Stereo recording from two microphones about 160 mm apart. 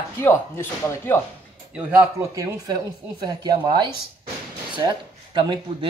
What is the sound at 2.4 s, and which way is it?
Speech, 20° right (ahead or behind).